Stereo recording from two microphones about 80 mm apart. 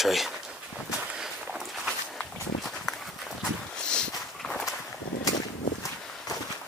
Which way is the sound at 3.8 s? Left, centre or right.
Centre.